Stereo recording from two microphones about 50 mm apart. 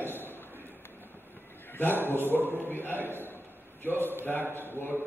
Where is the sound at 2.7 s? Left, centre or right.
Left.